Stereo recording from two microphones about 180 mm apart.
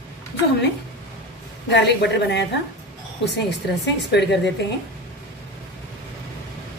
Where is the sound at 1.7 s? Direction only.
70° left (ahead or behind).